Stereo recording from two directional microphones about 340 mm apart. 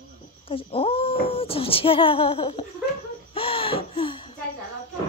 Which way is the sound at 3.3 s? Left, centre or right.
Centre.